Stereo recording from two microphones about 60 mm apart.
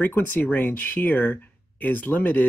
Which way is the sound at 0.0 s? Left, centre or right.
Left.